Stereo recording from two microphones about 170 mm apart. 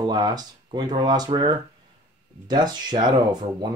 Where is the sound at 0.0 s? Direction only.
25° right (ahead or behind).